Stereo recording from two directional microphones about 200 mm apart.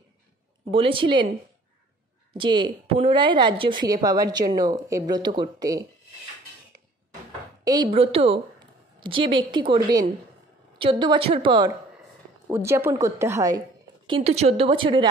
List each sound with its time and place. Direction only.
0.7 s a woman's voice: 25° right (ahead or behind)
2.3 s a woman's voice: 25° right (ahead or behind)
7.6 s a woman's voice: 25° right (ahead or behind)
12.4 s a woman's voice: 10° right (ahead or behind)
14.0 s a woman's voice: 30° right (ahead or behind)